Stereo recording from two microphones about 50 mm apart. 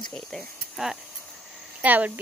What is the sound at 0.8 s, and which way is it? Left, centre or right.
Speech, centre.